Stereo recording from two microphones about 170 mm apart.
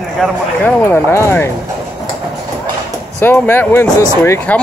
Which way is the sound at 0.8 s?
15° left (ahead or behind).